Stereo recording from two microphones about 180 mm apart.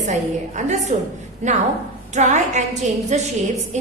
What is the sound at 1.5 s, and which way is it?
A woman's voice, 40° right (ahead or behind).